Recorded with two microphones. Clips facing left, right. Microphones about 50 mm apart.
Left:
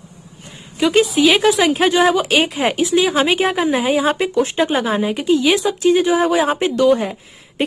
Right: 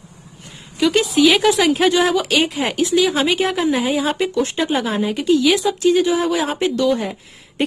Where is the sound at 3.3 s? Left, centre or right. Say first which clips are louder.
Left 1 dB; centre.